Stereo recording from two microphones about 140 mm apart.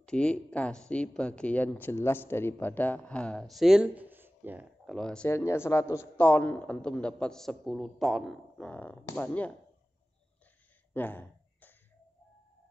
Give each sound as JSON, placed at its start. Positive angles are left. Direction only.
{"t": 0.0, "sound": "speech", "side_deg": 5}
{"t": 4.8, "sound": "speech", "side_deg": 5}
{"t": 5.3, "sound": "speech", "side_deg": 20}
{"t": 6.1, "sound": "speech", "side_deg": 10}
{"t": 8.6, "sound": "speech", "side_deg": 10}
{"t": 10.9, "sound": "a sound", "side_deg": 15}